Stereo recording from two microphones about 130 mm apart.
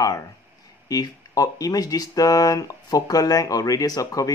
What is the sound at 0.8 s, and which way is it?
Speech, 25° left (ahead or behind).